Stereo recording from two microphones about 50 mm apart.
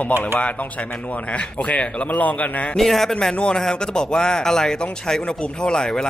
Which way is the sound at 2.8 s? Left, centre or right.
Centre.